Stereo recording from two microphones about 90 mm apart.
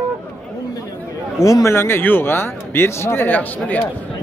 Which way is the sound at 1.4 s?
35° left (ahead or behind).